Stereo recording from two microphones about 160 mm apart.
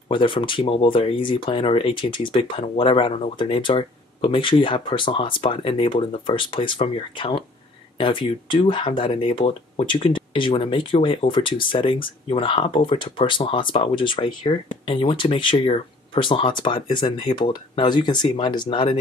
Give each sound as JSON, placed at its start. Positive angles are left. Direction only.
{"t": 0.1, "sound": "speech", "side_deg": 30}